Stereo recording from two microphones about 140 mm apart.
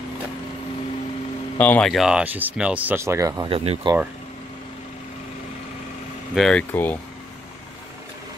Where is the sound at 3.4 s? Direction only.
45° right (ahead or behind).